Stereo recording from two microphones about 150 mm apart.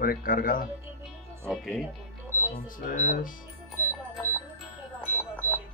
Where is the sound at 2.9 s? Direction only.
60° left (ahead or behind).